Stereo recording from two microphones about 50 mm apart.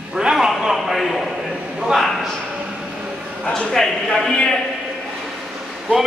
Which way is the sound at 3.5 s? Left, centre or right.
Centre.